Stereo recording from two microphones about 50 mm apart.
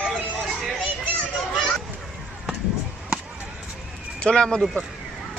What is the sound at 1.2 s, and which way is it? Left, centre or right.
Children playing, centre.